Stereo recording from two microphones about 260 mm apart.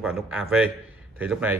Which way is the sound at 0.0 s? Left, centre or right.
Centre.